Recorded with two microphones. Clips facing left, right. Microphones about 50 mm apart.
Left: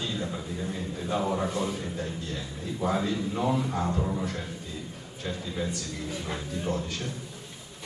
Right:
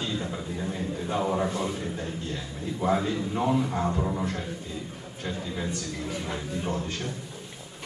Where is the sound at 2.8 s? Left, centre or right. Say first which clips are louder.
Right 2 dB; right.